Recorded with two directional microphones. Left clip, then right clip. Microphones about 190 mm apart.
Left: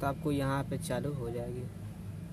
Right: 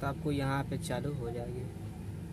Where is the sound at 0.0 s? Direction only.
15° left (ahead or behind).